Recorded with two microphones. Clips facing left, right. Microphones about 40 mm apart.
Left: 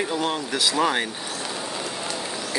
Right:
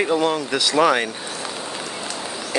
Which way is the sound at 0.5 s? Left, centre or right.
Right.